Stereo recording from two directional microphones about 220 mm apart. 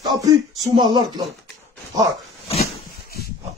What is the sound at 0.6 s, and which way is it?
Speech, 20° right (ahead or behind).